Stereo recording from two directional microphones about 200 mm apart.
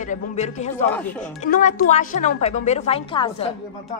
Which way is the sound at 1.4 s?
40° left (ahead or behind).